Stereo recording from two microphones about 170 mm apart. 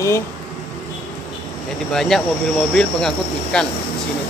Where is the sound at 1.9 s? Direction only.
Centre (ahead or behind).